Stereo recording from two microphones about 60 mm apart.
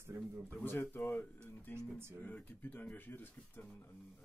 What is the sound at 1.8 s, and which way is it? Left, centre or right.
Speech, right.